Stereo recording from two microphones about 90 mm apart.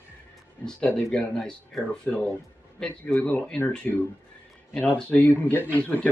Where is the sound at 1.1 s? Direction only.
10° left (ahead or behind).